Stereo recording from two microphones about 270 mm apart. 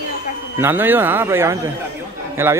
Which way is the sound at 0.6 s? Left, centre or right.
Centre.